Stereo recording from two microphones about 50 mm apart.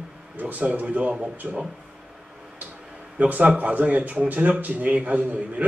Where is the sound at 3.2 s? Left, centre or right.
Right.